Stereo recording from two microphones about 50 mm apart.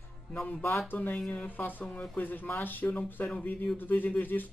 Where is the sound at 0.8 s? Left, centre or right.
Left.